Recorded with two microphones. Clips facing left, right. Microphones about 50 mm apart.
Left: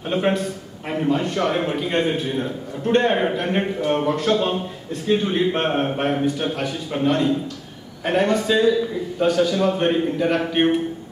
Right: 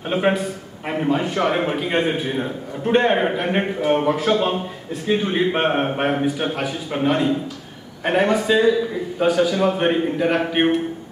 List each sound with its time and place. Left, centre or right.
0.1 s a man's voice: centre